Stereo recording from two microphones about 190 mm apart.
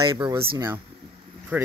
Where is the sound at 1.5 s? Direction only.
10° right (ahead or behind).